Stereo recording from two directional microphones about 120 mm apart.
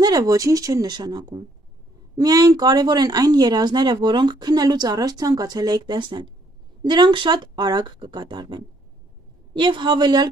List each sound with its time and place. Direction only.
0.0 s speech: 30° right (ahead or behind)